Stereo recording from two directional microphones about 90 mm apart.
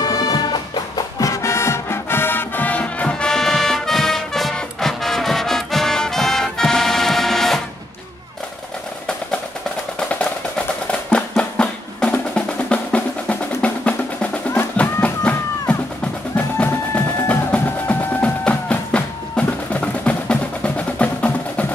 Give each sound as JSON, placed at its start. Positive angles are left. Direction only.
{"t": 0.0, "sound": "music", "side_deg": 50}
{"t": 1.2, "sound": "music", "side_deg": 35}
{"t": 11.1, "sound": "music", "side_deg": 10}